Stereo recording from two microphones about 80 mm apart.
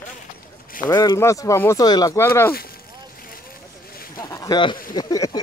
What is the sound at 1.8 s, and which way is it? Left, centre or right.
Speech, left.